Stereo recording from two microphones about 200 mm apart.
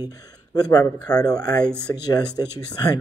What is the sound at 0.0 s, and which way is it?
Speech, 20° left (ahead or behind).